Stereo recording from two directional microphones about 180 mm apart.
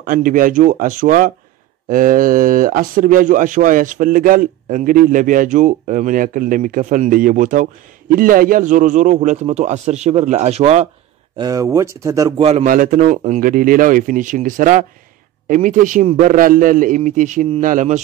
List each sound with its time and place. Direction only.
0.0 s a man's voice: 50° right (ahead or behind)
11.3 s speech: 20° right (ahead or behind)
12.4 s a man's voice: 35° right (ahead or behind)
12.6 s speech: 50° right (ahead or behind)